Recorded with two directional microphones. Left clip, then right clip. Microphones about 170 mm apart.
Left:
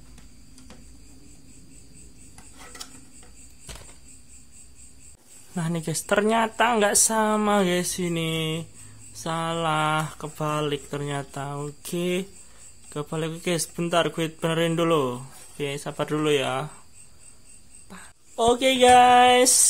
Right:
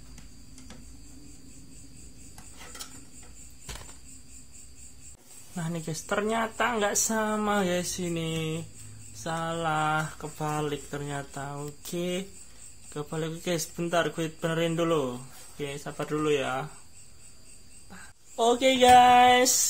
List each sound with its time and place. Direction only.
5.5 s speech: 55° left (ahead or behind)
17.8 s a sound: 60° left (ahead or behind)
18.3 s speech: 35° left (ahead or behind)